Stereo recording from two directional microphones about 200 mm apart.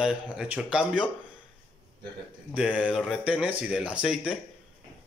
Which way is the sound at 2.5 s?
5° right (ahead or behind).